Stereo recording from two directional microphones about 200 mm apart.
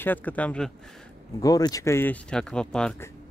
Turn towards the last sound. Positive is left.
turn(degrees=5)  # may be behind; listen again after turning